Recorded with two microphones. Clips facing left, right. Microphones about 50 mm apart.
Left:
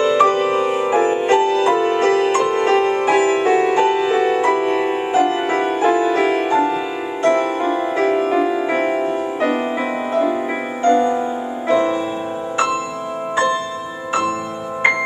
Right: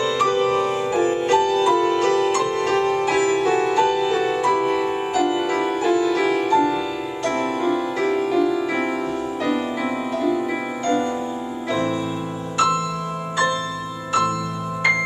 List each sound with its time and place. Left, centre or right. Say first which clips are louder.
0.0 s music: left 5 dB; left